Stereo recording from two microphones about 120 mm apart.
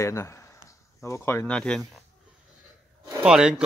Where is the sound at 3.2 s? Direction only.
5° right (ahead or behind).